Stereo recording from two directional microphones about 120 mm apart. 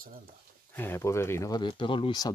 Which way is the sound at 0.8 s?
20° left (ahead or behind).